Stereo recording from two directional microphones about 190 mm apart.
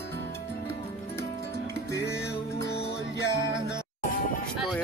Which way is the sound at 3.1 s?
15° left (ahead or behind).